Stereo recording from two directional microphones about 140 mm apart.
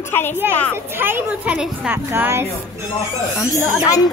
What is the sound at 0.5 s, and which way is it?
Speech, 10° left (ahead or behind).